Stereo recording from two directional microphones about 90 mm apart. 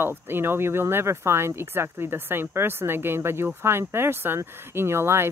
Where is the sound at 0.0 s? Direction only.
25° right (ahead or behind).